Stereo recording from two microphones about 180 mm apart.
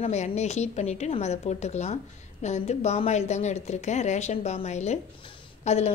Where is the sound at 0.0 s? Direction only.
40° left (ahead or behind).